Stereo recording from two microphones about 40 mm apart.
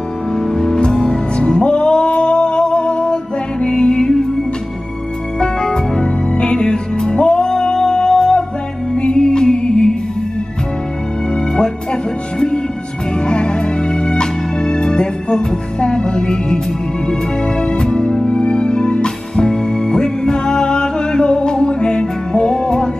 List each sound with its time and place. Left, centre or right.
0.3 s music: centre
0.7 s music: centre
5.4 s music: centre
11.3 s music: left